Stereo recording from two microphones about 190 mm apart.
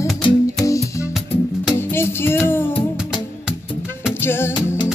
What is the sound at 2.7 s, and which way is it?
Music, 30° left (ahead or behind).